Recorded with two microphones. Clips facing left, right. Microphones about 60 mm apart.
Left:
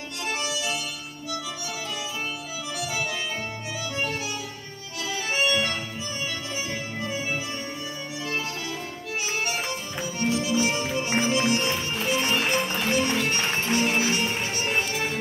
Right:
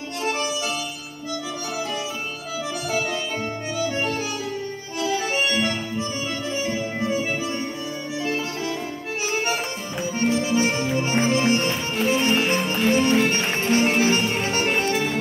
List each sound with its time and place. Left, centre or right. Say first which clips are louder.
10.3 s music: right 1 dB; right